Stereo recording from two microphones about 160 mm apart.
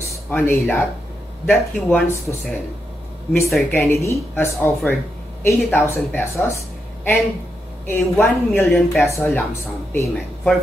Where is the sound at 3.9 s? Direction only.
20° left (ahead or behind).